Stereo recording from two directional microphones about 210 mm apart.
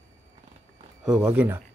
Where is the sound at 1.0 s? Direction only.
5° right (ahead or behind).